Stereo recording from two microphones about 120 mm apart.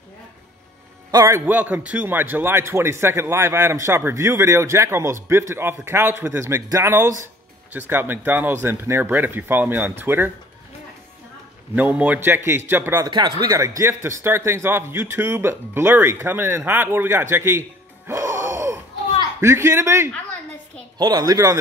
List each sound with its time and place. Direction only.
1.1 s speech: 25° right (ahead or behind)
1.5 s speech: 15° right (ahead or behind)
11.7 s speech: 10° right (ahead or behind)
13.0 s speech: 40° right (ahead or behind); by 20.1 s 20° right (ahead or behind)
21.0 s speech: 35° right (ahead or behind)